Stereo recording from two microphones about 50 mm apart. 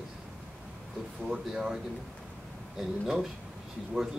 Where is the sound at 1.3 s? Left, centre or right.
Centre.